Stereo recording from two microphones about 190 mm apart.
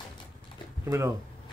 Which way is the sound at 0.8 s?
15° right (ahead or behind).